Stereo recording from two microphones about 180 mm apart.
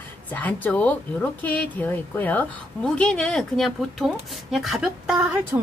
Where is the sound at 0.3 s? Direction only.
10° left (ahead or behind).